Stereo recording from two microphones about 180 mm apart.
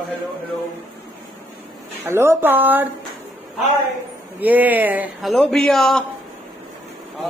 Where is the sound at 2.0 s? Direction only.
15° right (ahead or behind).